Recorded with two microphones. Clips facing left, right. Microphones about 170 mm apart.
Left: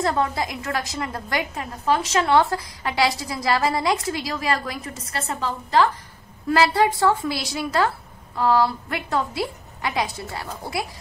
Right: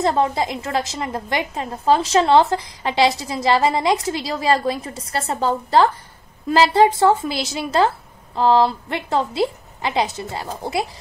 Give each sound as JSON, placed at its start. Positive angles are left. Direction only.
{"t": 0.0, "sound": "a woman's voice", "side_deg": -25}